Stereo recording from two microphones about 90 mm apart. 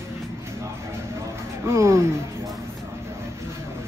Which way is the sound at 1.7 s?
35° right (ahead or behind).